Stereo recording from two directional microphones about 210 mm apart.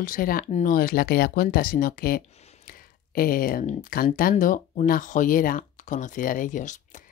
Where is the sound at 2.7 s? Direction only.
45° left (ahead or behind).